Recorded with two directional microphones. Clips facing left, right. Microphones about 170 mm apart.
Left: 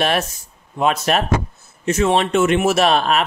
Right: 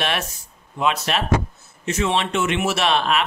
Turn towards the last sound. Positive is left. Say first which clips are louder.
# left 4 dB
turn(degrees=40)  # may be behind; listen again after turning